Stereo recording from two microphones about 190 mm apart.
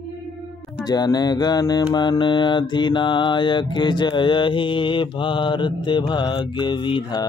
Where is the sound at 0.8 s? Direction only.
20° left (ahead or behind).